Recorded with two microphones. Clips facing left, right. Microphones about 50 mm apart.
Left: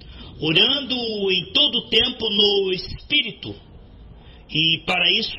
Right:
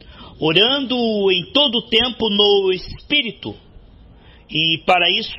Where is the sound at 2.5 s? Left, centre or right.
Centre.